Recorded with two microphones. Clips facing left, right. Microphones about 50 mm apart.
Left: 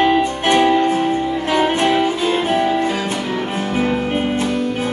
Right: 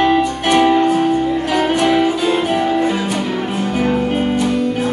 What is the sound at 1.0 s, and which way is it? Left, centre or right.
Music, left.